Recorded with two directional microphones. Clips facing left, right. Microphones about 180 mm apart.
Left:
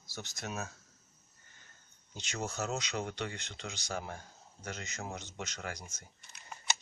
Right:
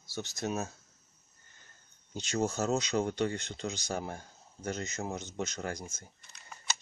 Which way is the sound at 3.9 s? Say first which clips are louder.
Right 4 dB; 30° right (ahead or behind).